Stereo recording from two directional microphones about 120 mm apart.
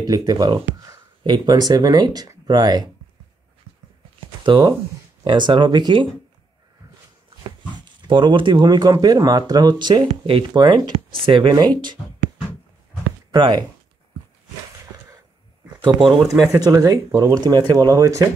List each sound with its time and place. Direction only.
0.0 s speech: 30° right (ahead or behind)
1.2 s speech: 40° right (ahead or behind)
4.4 s speech: 40° right (ahead or behind)
7.8 s speech: 40° right (ahead or behind)
13.3 s speech: 40° right (ahead or behind)
14.9 s a sound: 30° right (ahead or behind)
15.8 s speech: 40° right (ahead or behind)
16.5 s speech: 30° right (ahead or behind)